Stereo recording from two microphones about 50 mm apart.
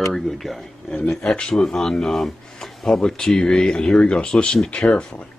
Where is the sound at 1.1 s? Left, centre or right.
Centre.